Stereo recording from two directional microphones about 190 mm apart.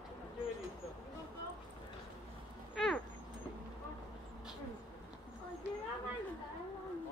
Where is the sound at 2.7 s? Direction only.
Centre (ahead or behind).